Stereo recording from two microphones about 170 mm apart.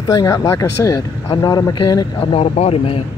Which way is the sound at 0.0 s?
20° left (ahead or behind).